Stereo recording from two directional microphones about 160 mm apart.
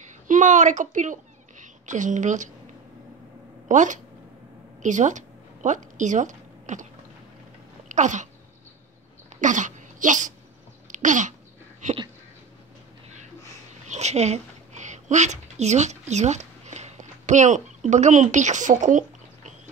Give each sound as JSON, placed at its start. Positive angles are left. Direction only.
{"t": 0.3, "sound": "a woman's voice", "side_deg": -50}
{"t": 3.6, "sound": "speech", "side_deg": -50}
{"t": 7.9, "sound": "speech", "side_deg": -50}
{"t": 9.3, "sound": "throat clearing", "side_deg": -50}
{"t": 10.9, "sound": "a sound", "side_deg": -50}
{"t": 13.8, "sound": "a sound", "side_deg": -45}